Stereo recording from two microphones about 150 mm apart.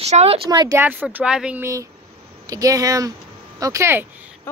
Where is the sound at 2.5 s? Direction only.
25° right (ahead or behind).